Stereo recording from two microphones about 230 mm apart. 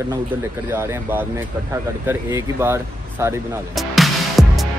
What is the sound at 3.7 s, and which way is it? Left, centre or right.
Music, centre.